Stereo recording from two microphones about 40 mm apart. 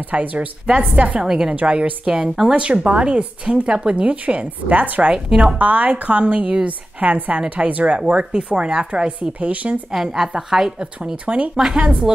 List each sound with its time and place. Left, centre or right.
0.0 s a woman's voice: right
1.2 s a woman's voice: centre
1.5 s speech: right
5.1 s a woman's voice: centre
5.6 s a woman's voice: right
8.1 s a woman's voice: right
9.8 s a woman's voice: centre
11.2 s a woman's voice: right